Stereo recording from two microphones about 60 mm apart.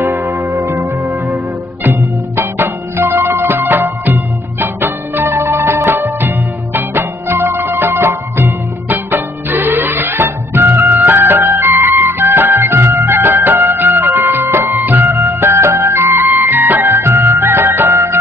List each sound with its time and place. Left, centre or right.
0.0 s music: right